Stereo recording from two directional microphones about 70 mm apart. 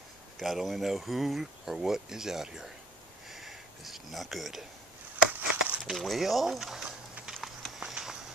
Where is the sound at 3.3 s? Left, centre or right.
Centre.